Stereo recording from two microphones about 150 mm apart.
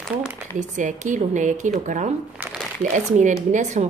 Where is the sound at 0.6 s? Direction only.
55° right (ahead or behind).